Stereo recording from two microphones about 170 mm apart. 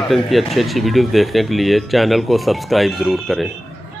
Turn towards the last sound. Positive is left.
turn(degrees=0)  # may be behind; listen again after turning